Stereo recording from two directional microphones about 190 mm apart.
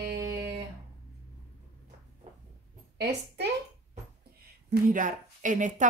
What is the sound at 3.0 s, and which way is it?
Speech, 60° right (ahead or behind).